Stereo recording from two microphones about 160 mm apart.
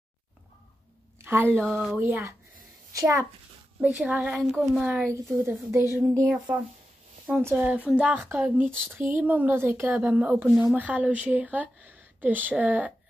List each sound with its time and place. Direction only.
1.2 s a child's voice: 15° right (ahead or behind)
3.8 s a child's voice: 10° right (ahead or behind)
5.0 s speech: 15° right (ahead or behind)
7.5 s speech: 10° right (ahead or behind)